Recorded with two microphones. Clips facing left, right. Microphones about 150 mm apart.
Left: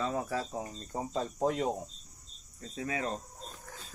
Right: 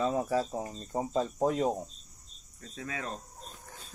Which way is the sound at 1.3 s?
25° right (ahead or behind).